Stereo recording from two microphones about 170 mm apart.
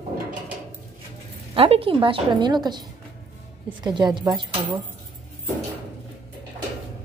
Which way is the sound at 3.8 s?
25° right (ahead or behind).